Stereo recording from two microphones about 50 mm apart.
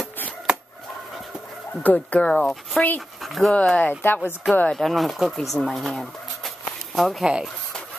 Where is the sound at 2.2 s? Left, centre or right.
Centre.